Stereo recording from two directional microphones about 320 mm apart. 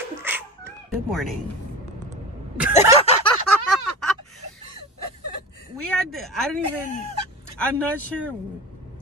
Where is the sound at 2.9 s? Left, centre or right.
Centre.